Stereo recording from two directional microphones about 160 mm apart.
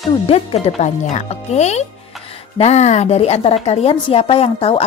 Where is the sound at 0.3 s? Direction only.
40° left (ahead or behind).